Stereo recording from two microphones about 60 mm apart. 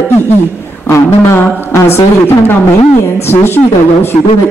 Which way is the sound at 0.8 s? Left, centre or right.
Left.